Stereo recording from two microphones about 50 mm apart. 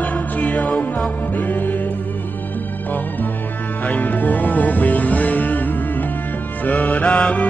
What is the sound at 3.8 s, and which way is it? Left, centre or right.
Speech, left.